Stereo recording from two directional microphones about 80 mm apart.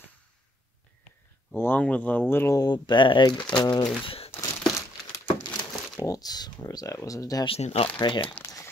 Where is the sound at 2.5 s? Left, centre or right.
Left.